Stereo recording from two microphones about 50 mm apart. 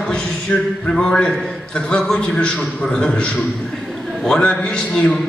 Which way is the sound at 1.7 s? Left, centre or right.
Left.